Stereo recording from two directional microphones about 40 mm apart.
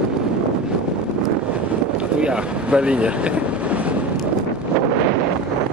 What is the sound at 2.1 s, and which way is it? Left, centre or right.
Vehicle, right.